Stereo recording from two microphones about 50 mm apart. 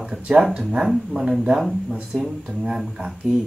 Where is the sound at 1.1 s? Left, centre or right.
Centre.